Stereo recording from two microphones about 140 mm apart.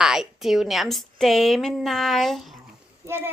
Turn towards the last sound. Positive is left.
turn(degrees=-15)  # may be behind; listen again after turning